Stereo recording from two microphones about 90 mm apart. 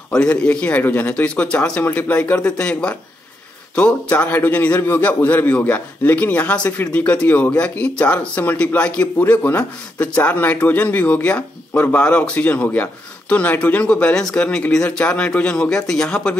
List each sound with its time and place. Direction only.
0.1 s a man's voice: 10° left (ahead or behind)